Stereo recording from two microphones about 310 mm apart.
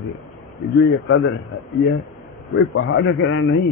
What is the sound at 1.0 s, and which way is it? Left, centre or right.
Speech, left.